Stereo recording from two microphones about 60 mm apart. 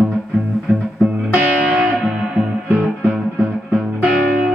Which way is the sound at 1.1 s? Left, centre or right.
Centre.